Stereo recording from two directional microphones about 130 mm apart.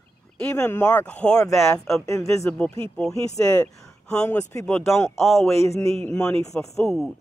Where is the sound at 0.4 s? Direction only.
15° left (ahead or behind).